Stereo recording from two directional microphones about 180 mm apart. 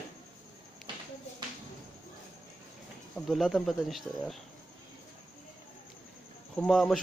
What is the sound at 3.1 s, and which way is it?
A man's voice, centre (ahead or behind).